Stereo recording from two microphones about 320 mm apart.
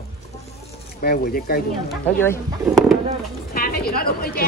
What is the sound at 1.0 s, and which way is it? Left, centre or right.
Speech, left.